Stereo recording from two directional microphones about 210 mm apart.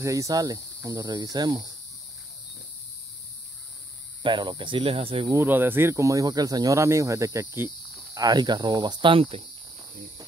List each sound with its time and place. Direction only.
0.0 s speech: 15° right (ahead or behind)
4.2 s speech: 20° right (ahead or behind)
5.4 s speech: 10° right (ahead or behind); by 9.4 s 25° right (ahead or behind)